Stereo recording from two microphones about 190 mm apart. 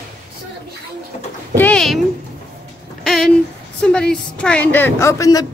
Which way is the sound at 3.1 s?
Centre (ahead or behind).